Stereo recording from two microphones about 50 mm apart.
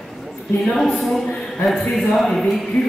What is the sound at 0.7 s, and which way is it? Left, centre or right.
A woman's voice, centre.